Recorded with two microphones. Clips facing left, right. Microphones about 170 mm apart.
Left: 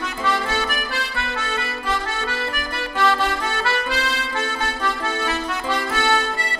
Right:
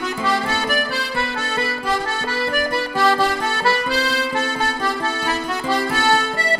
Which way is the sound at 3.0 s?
35° right (ahead or behind).